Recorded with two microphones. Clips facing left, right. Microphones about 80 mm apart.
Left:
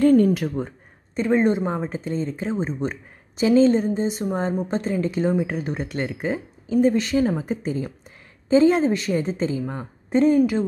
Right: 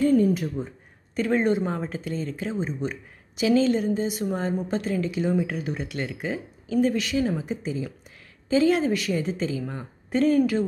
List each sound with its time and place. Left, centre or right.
0.0 s speech: left
1.1 s speech: left
5.3 s a woman's voice: left
5.6 s speech: left
8.5 s a woman's voice: left